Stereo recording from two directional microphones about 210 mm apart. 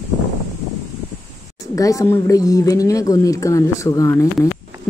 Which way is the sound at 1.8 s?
15° left (ahead or behind).